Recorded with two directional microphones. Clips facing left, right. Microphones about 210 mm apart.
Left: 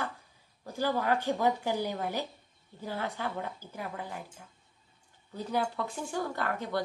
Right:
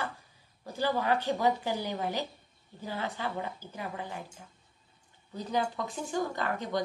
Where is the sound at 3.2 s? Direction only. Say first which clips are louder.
Right 1 dB; 5° right (ahead or behind).